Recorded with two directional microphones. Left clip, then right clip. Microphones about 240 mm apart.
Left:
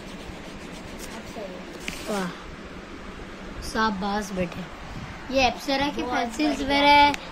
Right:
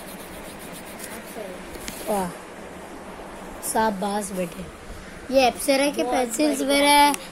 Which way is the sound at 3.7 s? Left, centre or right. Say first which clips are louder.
Right 2 dB; centre.